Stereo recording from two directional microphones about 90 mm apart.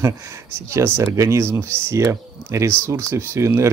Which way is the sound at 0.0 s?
35° right (ahead or behind).